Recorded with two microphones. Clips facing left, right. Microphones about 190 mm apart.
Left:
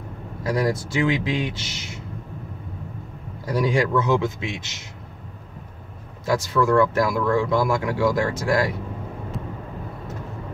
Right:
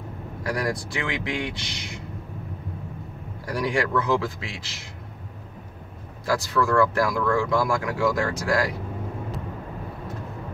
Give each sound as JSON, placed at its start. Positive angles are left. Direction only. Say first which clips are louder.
{"t": 0.4, "sound": "speech", "louder": "left 4 dB", "side_deg": 25}
{"t": 3.4, "sound": "speech", "louder": "left 4 dB", "side_deg": 25}
{"t": 6.2, "sound": "speech", "louder": "left 3 dB", "side_deg": 25}